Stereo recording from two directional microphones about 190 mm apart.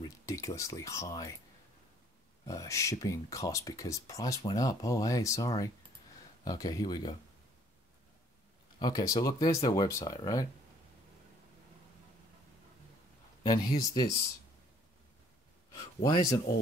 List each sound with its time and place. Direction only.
0.0 s speech: 20° left (ahead or behind)
2.4 s speech: 15° left (ahead or behind)
8.7 s speech: 20° left (ahead or behind)
13.4 s speech: 20° left (ahead or behind)
15.7 s speech: 20° left (ahead or behind)